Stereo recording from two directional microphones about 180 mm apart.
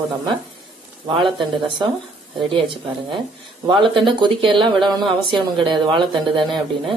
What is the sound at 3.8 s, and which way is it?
A woman's voice, 30° right (ahead or behind).